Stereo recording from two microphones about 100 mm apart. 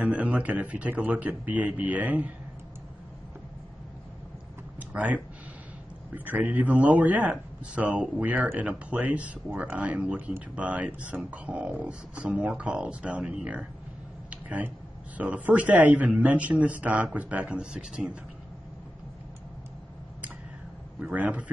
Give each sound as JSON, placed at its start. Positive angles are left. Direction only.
{"t": 0.0, "sound": "speech", "side_deg": -15}
{"t": 4.7, "sound": "a sound", "side_deg": -15}
{"t": 6.1, "sound": "speech", "side_deg": -15}
{"t": 14.3, "sound": "a sound", "side_deg": -15}
{"t": 15.1, "sound": "speech", "side_deg": -15}
{"t": 21.0, "sound": "speech", "side_deg": -15}